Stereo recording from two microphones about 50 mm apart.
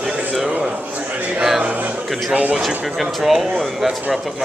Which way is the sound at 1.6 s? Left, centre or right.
Right.